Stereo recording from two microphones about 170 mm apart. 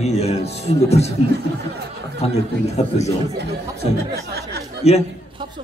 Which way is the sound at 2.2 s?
35° left (ahead or behind).